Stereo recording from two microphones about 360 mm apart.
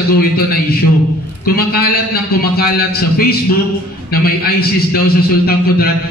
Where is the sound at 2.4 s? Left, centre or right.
Left.